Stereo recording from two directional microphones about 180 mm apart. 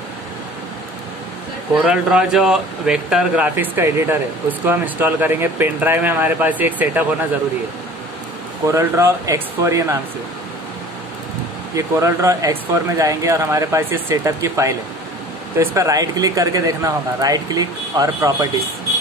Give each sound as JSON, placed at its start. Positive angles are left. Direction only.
{"t": 1.9, "sound": "speech", "side_deg": -5}
{"t": 8.6, "sound": "speech", "side_deg": -15}
{"t": 11.7, "sound": "speech", "side_deg": -15}